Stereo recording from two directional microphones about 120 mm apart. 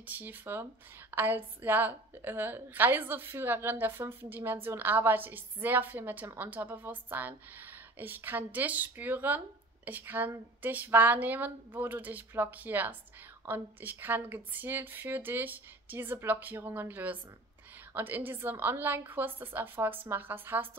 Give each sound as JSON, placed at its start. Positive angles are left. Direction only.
{"t": 0.0, "sound": "a woman's voice", "side_deg": -15}